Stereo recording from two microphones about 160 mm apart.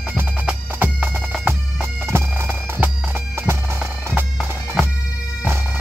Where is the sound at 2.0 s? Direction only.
15° right (ahead or behind).